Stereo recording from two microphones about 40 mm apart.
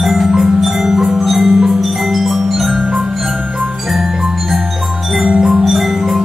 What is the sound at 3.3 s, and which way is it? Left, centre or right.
Music, right.